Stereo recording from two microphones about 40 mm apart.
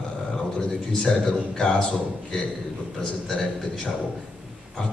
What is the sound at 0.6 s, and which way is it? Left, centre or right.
Speech, left.